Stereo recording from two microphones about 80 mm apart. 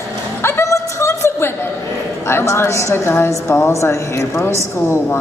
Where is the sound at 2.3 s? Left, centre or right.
Left.